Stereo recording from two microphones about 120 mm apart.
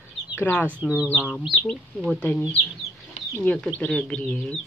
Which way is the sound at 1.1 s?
5° left (ahead or behind).